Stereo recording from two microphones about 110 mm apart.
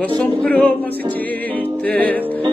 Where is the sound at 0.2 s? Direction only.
10° left (ahead or behind).